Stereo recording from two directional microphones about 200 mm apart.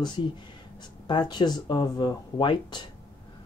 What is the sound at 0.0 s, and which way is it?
Speech, 20° left (ahead or behind).